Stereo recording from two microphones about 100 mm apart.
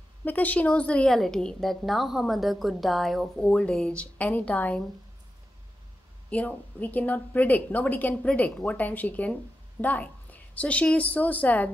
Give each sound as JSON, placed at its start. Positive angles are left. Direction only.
{"t": 0.2, "sound": "a woman's voice", "side_deg": 15}
{"t": 6.3, "sound": "a woman's voice", "side_deg": 15}